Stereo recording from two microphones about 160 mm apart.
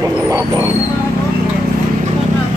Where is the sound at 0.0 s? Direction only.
20° right (ahead or behind).